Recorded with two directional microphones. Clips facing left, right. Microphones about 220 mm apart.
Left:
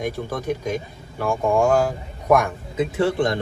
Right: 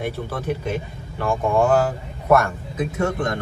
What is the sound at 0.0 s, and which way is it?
A man's voice, 15° left (ahead or behind).